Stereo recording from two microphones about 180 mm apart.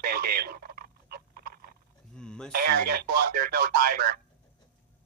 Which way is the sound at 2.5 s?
60° right (ahead or behind).